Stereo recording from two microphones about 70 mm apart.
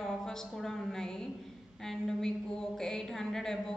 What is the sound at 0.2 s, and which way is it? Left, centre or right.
A woman's voice, centre.